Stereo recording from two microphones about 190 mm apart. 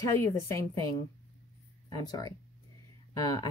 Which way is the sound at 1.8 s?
20° left (ahead or behind).